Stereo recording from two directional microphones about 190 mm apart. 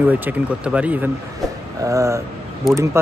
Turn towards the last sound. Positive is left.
turn(degrees=-15)  # may be behind; listen again after turning